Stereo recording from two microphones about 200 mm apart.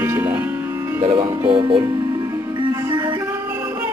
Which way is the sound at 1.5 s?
25° right (ahead or behind).